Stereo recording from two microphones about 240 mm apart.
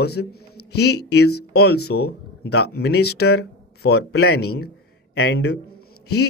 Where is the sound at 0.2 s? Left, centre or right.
Left.